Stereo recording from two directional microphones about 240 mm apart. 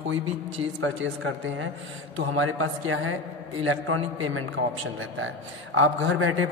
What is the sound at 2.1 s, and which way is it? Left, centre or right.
A man's voice, right.